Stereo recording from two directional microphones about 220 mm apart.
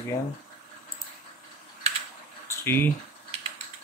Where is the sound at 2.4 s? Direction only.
10° left (ahead or behind).